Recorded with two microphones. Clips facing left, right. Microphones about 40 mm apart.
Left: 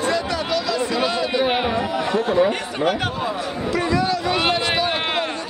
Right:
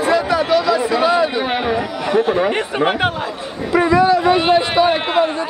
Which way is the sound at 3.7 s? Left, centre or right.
Right.